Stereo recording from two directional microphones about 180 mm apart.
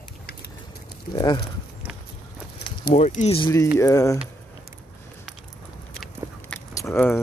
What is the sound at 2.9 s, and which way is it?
Speech, 40° left (ahead or behind).